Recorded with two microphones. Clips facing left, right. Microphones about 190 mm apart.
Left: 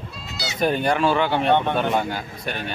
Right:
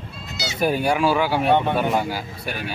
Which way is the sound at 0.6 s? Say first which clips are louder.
Even; 5° right (ahead or behind).